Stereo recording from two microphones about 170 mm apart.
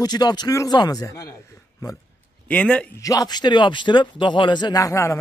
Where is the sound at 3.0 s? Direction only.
20° left (ahead or behind).